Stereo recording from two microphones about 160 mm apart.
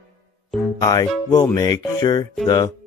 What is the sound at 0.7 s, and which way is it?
Speech, 25° left (ahead or behind).